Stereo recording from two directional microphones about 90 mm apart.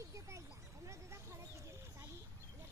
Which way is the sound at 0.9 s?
35° right (ahead or behind).